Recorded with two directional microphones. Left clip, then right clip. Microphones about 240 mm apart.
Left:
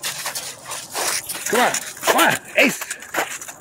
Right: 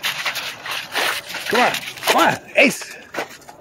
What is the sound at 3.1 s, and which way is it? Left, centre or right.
Bird, left.